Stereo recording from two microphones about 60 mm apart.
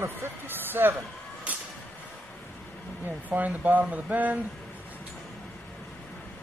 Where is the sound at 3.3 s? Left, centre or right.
Right.